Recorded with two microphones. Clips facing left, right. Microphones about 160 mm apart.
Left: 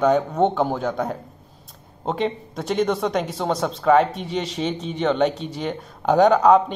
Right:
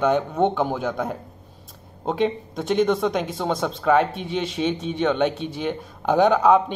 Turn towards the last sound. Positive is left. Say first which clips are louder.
# left 2 dB
turn(degrees=-5)  # may be behind; listen again after turning